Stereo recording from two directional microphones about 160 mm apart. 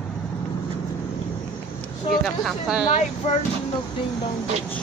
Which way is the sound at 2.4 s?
5° right (ahead or behind).